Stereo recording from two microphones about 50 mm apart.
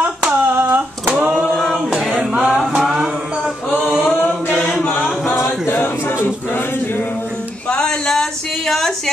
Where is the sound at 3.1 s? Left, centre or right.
Right.